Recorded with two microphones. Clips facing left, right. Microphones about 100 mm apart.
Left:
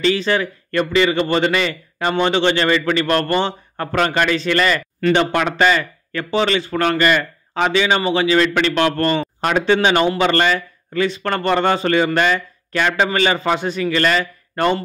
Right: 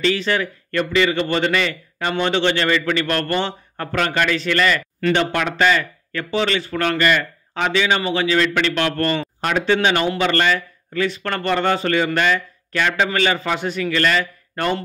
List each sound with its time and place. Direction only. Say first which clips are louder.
0.0 s a man's voice: left 2 dB; 20° left (ahead or behind); by 7.7 s 35° left (ahead or behind)
7.7 s speech: left 2 dB; 20° left (ahead or behind)